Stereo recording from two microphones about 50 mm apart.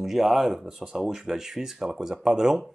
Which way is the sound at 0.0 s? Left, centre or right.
Centre.